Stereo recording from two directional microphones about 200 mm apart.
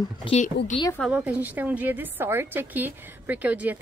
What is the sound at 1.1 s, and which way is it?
A woman's voice, 10° right (ahead or behind).